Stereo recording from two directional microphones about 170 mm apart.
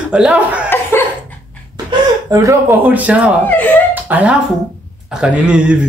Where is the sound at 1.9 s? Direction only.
20° right (ahead or behind).